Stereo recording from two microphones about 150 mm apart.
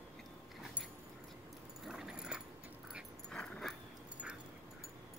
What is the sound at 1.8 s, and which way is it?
Dog, 5° right (ahead or behind).